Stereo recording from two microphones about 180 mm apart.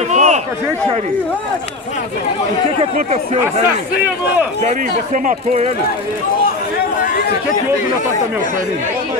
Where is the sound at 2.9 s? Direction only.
40° right (ahead or behind).